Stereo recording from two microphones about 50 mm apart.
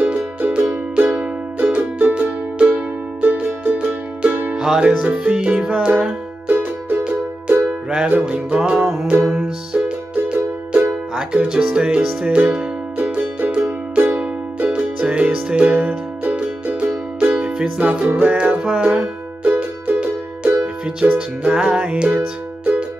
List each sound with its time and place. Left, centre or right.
0.9 s music: right
4.7 s music: right
7.1 s music: right
19.4 s music: right
20.0 s music: centre